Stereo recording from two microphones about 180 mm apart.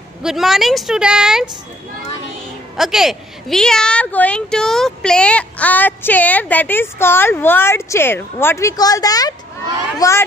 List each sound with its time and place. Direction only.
0.2 s a woman's voice: centre (ahead or behind)
2.8 s a woman's voice: centre (ahead or behind); by 10.2 s 15° left (ahead or behind)